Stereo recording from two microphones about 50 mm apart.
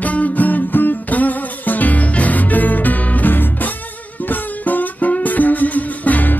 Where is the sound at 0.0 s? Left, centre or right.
Left.